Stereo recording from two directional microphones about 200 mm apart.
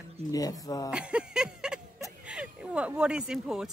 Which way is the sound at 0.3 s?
20° left (ahead or behind).